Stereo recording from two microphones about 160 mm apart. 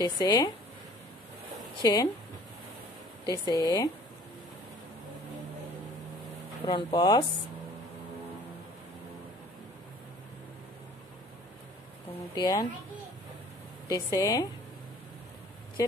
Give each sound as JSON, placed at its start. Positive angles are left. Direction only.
{"t": 0.0, "sound": "speech", "side_deg": 25}
{"t": 1.8, "sound": "speech", "side_deg": 25}
{"t": 3.3, "sound": "speech", "side_deg": 25}
{"t": 6.6, "sound": "speech", "side_deg": 30}
{"t": 12.4, "sound": "speech", "side_deg": 25}
{"t": 13.8, "sound": "speech", "side_deg": 20}